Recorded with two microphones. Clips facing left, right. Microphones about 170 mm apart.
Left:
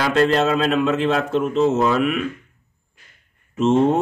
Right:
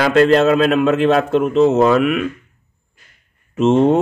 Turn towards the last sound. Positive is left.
turn(degrees=-75)  # may be behind; listen again after turning